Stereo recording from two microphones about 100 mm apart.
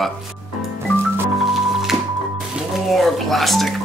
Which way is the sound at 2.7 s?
Centre (ahead or behind).